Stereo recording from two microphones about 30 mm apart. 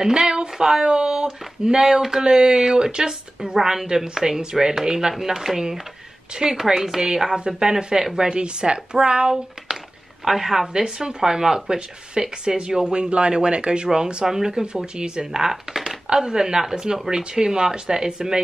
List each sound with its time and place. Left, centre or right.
0.0 s a sound: right
0.8 s speech: right
6.6 s speech: centre
7.3 s speech: right
10.2 s speech: centre
10.7 s speech: right